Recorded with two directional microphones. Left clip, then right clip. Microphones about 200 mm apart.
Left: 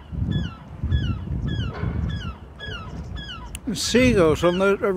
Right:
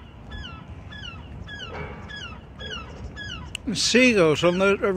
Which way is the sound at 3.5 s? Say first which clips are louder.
Right 2 dB; 10° left (ahead or behind).